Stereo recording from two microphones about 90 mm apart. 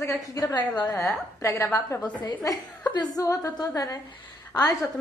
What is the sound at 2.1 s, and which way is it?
A woman's voice, 45° left (ahead or behind).